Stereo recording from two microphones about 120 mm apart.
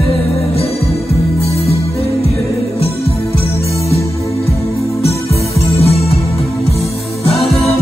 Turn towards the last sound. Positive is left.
turn(degrees=55)  # may be behind; listen again after turning